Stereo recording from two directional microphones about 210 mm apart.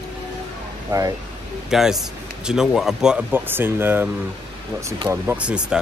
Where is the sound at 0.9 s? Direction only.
15° right (ahead or behind).